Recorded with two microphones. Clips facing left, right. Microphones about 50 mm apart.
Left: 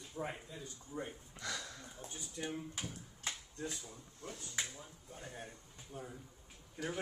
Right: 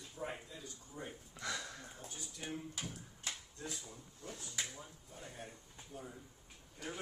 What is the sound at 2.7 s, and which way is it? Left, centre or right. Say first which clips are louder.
Drawer open or close: left 1 dB; left.